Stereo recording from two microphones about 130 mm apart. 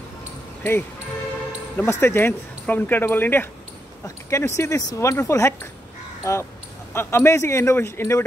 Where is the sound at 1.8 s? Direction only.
20° left (ahead or behind).